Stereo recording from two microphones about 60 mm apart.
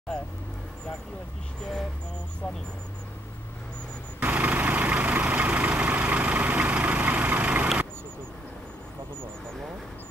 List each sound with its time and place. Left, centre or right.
4.2 s vehicle: right